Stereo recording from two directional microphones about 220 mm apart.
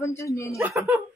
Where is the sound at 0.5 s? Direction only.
10° right (ahead or behind).